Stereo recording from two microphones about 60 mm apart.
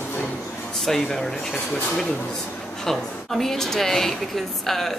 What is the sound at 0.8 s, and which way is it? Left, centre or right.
Speech, centre.